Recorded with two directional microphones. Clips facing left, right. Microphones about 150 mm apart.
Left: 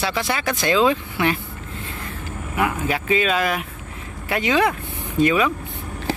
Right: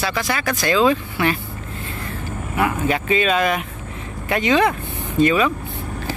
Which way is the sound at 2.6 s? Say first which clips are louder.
Right 2 dB; 5° left (ahead or behind).